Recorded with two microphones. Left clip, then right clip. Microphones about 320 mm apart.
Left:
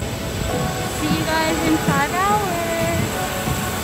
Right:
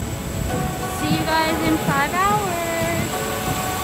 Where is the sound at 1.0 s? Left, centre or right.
Centre.